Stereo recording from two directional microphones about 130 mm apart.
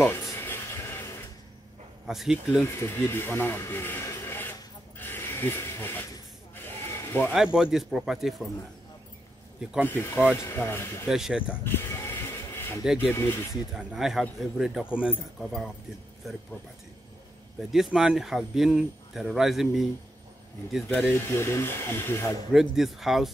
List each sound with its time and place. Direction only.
0.0 s a sound: 20° left (ahead or behind)
2.0 s a man's voice: 5° right (ahead or behind)
2.6 s speech: 15° left (ahead or behind)
6.6 s a sound: 15° left (ahead or behind)
7.5 s a man's voice: 5° right (ahead or behind)
9.8 s speech: 15° left (ahead or behind)
11.1 s a man's voice: 5° right (ahead or behind)
11.6 s sheep: 20° left (ahead or behind)
12.8 s a man's voice: 5° right (ahead or behind)
13.1 s speech: 20° left (ahead or behind)
13.7 s a man's voice: 5° right (ahead or behind)
17.6 s a man's voice: centre (ahead or behind)
20.9 s speech: 15° left (ahead or behind)
22.5 s a man's voice: centre (ahead or behind)